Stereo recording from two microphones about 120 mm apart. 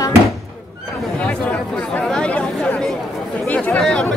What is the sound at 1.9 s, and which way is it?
Chatter, 10° left (ahead or behind).